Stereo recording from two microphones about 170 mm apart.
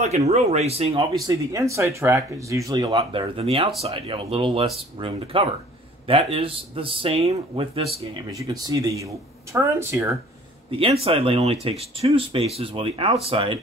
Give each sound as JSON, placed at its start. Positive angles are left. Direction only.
{"t": 0.3, "sound": "speech", "side_deg": -40}
{"t": 1.2, "sound": "speech", "side_deg": -20}
{"t": 8.3, "sound": "speech", "side_deg": -20}
{"t": 10.7, "sound": "speech", "side_deg": -35}